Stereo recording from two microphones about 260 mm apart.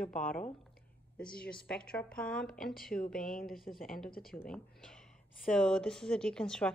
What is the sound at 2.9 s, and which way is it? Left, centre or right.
Speech, left.